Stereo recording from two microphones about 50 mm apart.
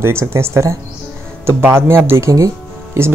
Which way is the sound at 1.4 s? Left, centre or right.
Right.